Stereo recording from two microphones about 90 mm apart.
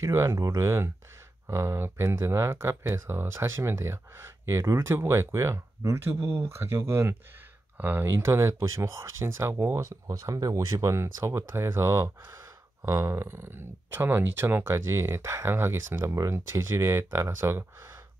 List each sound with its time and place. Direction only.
0.0 s speech: 35° right (ahead or behind)